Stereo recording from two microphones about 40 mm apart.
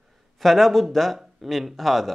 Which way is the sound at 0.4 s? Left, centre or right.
Centre.